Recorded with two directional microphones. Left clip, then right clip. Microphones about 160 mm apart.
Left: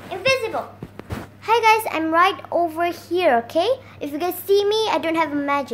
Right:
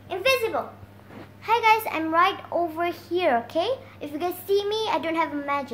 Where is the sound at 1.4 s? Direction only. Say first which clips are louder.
Left 4 dB; 45° left (ahead or behind).